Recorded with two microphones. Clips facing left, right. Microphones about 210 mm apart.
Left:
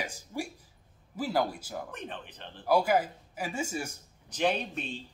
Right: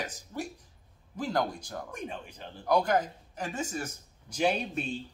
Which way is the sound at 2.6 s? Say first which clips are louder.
Left 1 dB; 5° left (ahead or behind).